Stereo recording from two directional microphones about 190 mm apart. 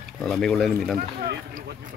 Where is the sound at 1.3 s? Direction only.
60° right (ahead or behind).